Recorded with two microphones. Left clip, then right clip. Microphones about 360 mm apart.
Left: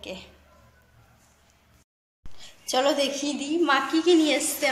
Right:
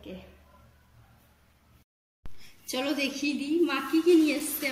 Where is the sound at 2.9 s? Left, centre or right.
Left.